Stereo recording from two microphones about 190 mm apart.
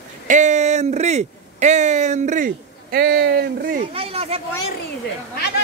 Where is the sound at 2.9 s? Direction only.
55° right (ahead or behind).